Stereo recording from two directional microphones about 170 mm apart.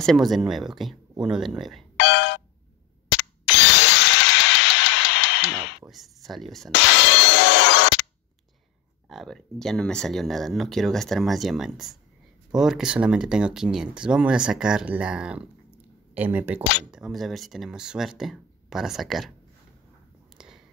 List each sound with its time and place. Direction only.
0.0 s speech: centre (ahead or behind)
2.0 s a sound: 90° left
3.2 s tools: 90° left
5.9 s speech: centre (ahead or behind)
6.7 s music: 90° left
9.1 s speech: centre (ahead or behind)
20.3 s a sound: 5° right (ahead or behind)